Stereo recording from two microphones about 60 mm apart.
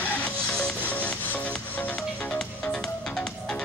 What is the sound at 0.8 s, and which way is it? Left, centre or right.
Music, left.